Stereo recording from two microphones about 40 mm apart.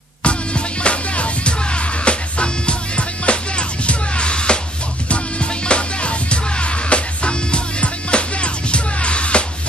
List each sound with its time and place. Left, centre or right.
0.2 s music: left